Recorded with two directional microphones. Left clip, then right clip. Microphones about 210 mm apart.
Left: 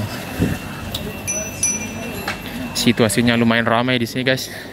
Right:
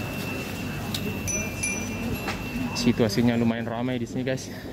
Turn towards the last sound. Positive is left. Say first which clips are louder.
# left 10 dB
turn(degrees=10)  # may be behind; listen again after turning